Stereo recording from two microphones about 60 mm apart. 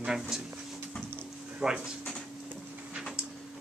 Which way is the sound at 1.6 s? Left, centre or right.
Centre.